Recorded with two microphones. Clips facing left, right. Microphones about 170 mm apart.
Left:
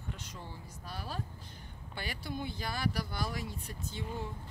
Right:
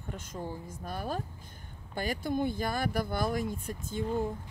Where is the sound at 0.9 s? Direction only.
50° right (ahead or behind).